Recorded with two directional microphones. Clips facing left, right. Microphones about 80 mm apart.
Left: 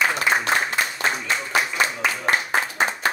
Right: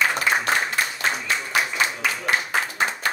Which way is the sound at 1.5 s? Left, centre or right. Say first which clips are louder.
Left 2 dB; left.